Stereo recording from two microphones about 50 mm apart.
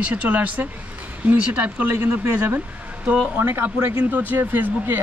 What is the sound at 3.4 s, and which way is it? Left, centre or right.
Speech, right.